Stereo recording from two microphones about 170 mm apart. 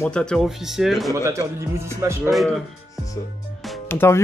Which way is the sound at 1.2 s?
15° right (ahead or behind).